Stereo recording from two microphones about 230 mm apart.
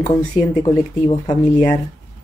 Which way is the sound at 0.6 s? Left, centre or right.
Centre.